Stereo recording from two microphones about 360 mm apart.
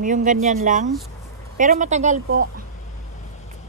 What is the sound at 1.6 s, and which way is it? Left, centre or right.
Speech, right.